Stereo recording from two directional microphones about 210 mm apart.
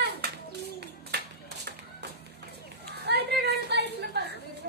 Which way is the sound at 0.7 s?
50° right (ahead or behind).